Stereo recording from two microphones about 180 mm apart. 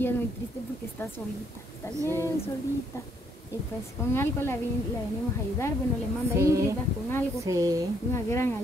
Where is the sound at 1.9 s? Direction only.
15° right (ahead or behind).